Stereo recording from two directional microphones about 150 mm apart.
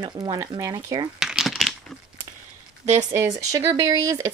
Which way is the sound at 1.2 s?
5° right (ahead or behind).